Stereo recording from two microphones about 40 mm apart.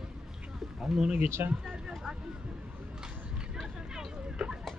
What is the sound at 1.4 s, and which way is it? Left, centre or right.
Speech, right.